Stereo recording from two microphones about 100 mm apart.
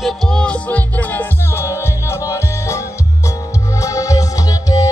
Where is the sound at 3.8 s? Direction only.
35° left (ahead or behind).